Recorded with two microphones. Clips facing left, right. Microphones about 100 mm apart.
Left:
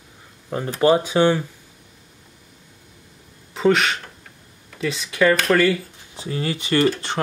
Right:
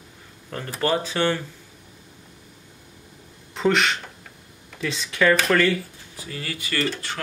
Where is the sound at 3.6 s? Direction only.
Centre (ahead or behind).